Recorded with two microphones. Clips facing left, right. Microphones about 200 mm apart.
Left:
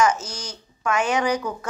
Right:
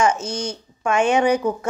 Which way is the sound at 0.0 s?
25° right (ahead or behind).